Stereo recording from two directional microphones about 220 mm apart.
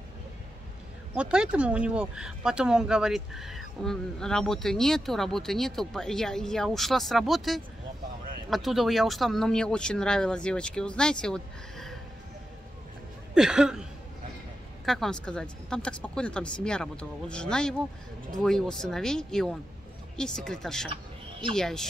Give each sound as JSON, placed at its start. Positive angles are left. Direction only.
{"t": 1.1, "sound": "speech", "side_deg": -5}
{"t": 13.3, "sound": "speech", "side_deg": -5}
{"t": 14.9, "sound": "speech", "side_deg": 0}